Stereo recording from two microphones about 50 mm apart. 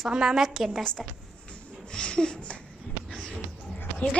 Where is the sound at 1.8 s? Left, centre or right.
Centre.